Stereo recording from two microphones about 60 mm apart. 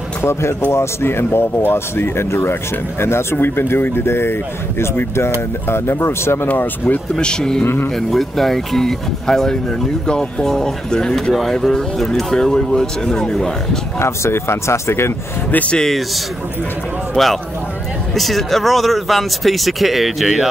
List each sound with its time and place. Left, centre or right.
0.2 s speech: left
6.5 s speech: left
7.2 s speech: centre
7.6 s speech: left
8.1 s speech: centre
13.9 s speech: left
15.5 s speech: left
17.1 s speech: centre